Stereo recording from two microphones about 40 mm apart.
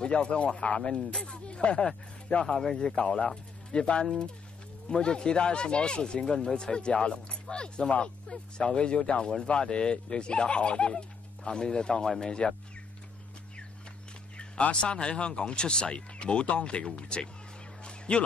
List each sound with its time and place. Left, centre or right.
0.0 s speech: left
2.4 s speech: centre
3.0 s speech: left
14.3 s a sound: left
14.6 s speech: left
17.8 s music: left